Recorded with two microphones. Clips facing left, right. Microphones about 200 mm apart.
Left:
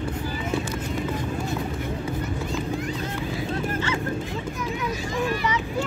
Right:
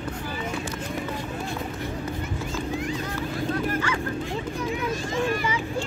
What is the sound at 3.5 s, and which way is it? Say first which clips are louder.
Vehicle: right 1 dB; 25° left (ahead or behind).